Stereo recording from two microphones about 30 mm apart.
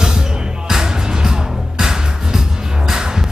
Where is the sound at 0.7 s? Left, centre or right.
Right.